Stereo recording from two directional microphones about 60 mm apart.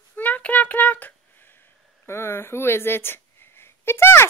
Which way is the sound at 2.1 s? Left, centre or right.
Left.